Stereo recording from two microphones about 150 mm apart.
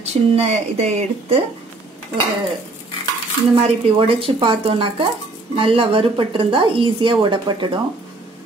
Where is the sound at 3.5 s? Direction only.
40° right (ahead or behind).